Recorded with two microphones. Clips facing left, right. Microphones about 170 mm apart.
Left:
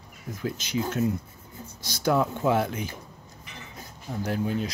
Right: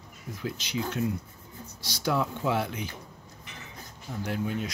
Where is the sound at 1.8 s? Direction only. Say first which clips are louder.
Left 4 dB; 50° left (ahead or behind).